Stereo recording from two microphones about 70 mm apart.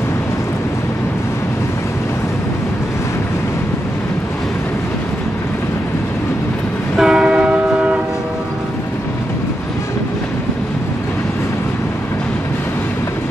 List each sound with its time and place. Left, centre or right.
7.0 s train: centre